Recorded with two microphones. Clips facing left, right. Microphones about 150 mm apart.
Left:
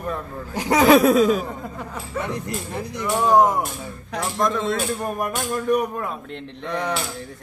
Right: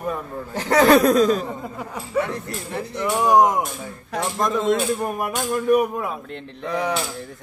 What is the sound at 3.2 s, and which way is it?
Speech, 15° right (ahead or behind).